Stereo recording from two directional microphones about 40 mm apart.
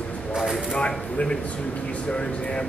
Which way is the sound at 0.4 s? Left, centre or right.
Centre.